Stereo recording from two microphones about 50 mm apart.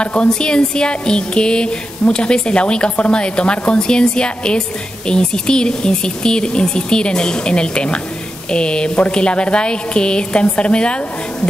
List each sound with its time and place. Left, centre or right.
0.0 s speech: left